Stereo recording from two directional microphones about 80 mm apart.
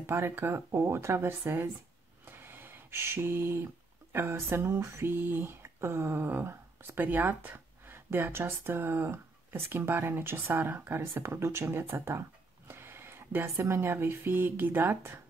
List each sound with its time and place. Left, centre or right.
0.0 s speech: right
2.2 s a sound: right
4.1 s speech: right